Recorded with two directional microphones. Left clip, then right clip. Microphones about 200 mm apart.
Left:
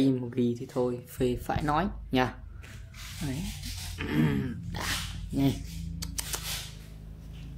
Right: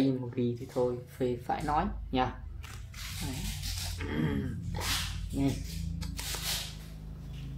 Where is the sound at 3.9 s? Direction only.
45° left (ahead or behind).